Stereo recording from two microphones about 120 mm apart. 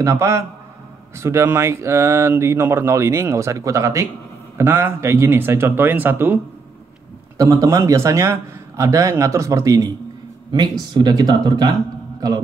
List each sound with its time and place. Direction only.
0.0 s speech: 25° right (ahead or behind)
10.5 s speech: 40° right (ahead or behind)